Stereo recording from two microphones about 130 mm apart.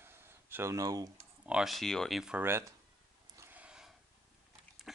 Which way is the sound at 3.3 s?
15° right (ahead or behind).